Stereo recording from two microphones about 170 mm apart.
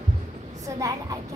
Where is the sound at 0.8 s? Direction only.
20° right (ahead or behind).